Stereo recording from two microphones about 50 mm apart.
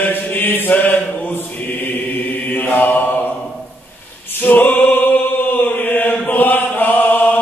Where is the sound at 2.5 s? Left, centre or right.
Left.